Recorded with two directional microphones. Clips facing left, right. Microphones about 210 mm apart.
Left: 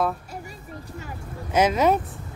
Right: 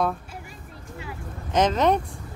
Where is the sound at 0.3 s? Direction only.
40° left (ahead or behind).